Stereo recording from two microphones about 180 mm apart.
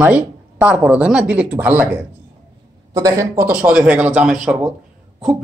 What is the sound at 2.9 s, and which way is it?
Speech, 20° right (ahead or behind).